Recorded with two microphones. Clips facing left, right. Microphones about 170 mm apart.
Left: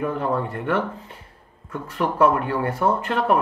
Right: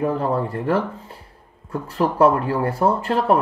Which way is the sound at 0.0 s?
35° right (ahead or behind).